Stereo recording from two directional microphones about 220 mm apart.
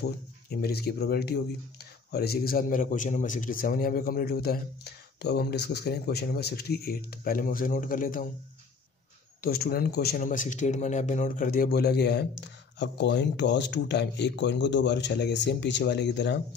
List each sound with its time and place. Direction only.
0.0 s a man's voice: 45° left (ahead or behind)
9.4 s speech: 45° left (ahead or behind)